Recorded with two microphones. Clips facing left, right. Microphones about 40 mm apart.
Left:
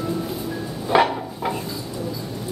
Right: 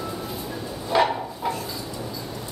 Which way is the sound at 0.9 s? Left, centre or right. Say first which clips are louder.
Left 3 dB; left.